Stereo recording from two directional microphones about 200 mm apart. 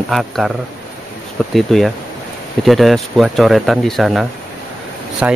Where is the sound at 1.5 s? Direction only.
Centre (ahead or behind).